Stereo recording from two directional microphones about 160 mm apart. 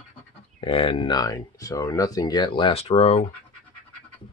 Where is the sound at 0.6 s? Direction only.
35° left (ahead or behind).